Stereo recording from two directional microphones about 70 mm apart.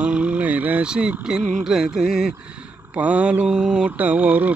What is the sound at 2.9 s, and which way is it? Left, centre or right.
Mantra, centre.